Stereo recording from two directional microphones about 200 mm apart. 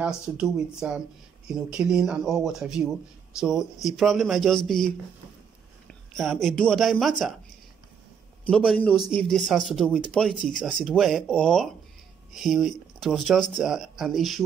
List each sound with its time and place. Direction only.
0.0 s speech: 5° right (ahead or behind)
8.5 s speech: 5° left (ahead or behind)